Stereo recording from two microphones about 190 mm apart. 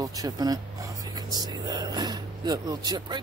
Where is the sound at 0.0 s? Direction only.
20° right (ahead or behind).